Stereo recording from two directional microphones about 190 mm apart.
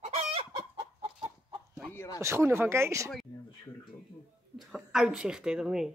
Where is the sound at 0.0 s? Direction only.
30° right (ahead or behind).